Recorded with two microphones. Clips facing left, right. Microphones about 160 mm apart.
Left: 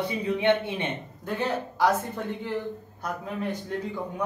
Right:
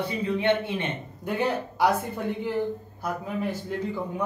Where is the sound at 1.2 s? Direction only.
10° right (ahead or behind).